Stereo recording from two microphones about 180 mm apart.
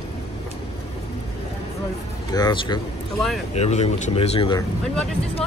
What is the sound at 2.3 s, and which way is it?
Speech, 25° left (ahead or behind).